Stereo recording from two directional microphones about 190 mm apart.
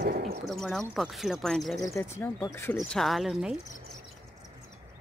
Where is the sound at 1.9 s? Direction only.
15° left (ahead or behind).